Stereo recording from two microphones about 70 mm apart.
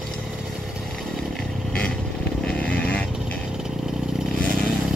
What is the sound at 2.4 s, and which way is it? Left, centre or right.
Vehicle, centre.